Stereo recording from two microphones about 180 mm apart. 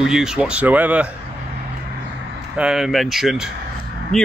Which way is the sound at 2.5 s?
5° right (ahead or behind).